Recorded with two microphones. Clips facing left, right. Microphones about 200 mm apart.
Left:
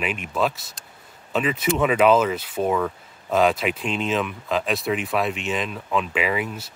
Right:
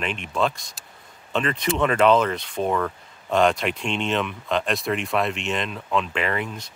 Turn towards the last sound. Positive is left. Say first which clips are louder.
# left 2 dB
turn(degrees=5)  # may be behind; listen again after turning